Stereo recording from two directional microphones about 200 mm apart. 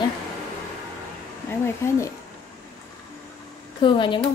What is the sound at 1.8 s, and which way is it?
Speech, 15° left (ahead or behind).